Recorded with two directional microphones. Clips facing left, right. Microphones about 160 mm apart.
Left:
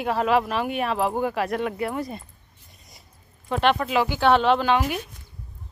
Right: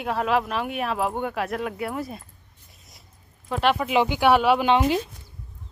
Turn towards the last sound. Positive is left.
turn(degrees=-25)  # may be behind; listen again after turning